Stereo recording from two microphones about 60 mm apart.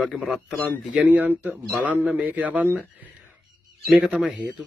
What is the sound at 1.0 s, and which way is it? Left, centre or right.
A man's voice, right.